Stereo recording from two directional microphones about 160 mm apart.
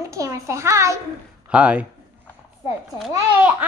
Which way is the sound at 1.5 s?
10° right (ahead or behind).